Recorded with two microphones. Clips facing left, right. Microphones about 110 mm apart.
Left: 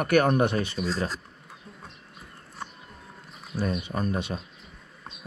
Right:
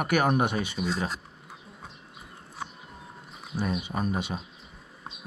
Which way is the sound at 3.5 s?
Centre (ahead or behind).